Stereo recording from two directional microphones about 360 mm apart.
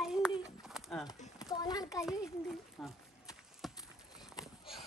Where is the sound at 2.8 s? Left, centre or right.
Centre.